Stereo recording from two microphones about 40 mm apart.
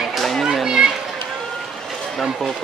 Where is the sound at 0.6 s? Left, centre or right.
Centre.